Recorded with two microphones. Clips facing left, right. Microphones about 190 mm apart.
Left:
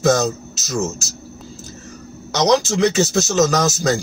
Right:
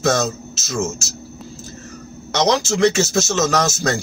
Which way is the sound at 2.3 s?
Centre (ahead or behind).